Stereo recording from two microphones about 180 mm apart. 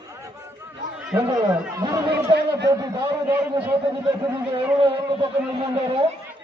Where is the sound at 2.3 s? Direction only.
70° right (ahead or behind).